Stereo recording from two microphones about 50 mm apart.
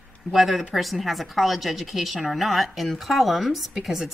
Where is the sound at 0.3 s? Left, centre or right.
Centre.